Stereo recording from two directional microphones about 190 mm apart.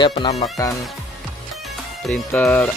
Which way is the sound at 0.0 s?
25° left (ahead or behind).